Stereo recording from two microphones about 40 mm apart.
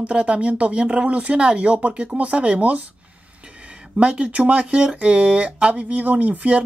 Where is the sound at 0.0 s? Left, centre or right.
Right.